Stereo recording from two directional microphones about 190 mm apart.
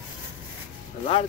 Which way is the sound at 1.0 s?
30° left (ahead or behind).